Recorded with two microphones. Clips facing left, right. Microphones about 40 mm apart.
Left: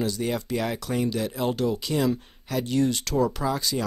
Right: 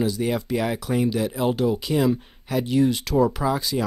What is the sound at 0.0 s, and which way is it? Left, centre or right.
Speech, centre.